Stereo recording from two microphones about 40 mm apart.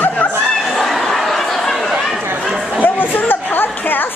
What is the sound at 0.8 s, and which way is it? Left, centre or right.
Fowl, centre.